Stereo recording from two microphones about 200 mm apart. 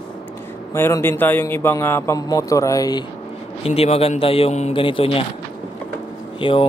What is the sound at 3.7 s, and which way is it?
A man's voice, 30° left (ahead or behind).